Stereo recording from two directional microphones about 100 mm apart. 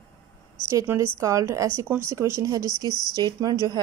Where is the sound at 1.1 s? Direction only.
30° right (ahead or behind).